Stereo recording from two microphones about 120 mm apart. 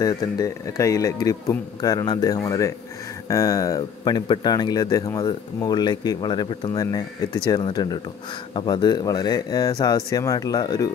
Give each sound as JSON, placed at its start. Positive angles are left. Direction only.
{"t": 0.0, "sound": "speech", "side_deg": 30}